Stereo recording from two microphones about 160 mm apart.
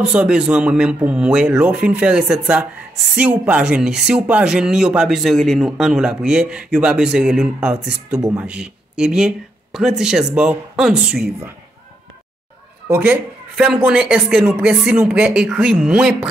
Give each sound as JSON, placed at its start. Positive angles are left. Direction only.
{"t": 0.0, "sound": "speech", "side_deg": -5}
{"t": 8.2, "sound": "speech", "side_deg": -15}
{"t": 8.5, "sound": "speech", "side_deg": -5}
{"t": 12.8, "sound": "speech", "side_deg": -15}